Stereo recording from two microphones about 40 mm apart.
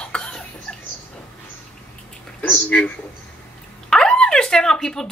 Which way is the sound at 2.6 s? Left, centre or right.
Left.